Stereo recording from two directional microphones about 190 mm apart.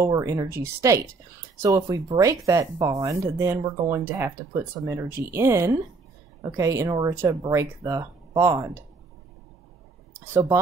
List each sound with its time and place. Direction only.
0.0 s speech: 15° right (ahead or behind)
10.3 s speech: 15° right (ahead or behind)